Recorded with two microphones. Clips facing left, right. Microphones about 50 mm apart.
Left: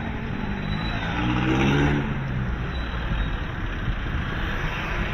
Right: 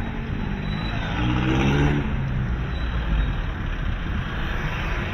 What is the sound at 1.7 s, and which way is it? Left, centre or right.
Vehicle, centre.